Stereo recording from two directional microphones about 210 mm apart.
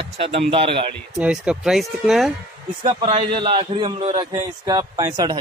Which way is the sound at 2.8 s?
20° right (ahead or behind).